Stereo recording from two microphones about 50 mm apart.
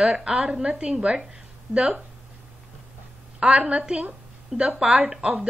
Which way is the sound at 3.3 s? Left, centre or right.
Right.